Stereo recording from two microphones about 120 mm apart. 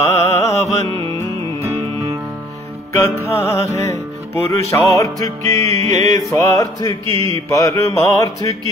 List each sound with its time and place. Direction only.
0.3 s music: 30° left (ahead or behind)
2.9 s music: 25° left (ahead or behind)
7.1 s mantra: 50° right (ahead or behind)
7.5 s music: 30° left (ahead or behind)